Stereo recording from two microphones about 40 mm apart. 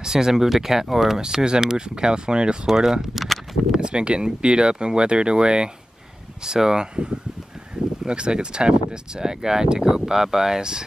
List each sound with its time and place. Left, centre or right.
0.0 s speech: centre
2.6 s speech: centre
3.8 s speech: right
8.1 s speech: right